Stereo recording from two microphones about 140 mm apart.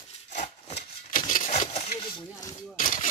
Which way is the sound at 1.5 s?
50° left (ahead or behind).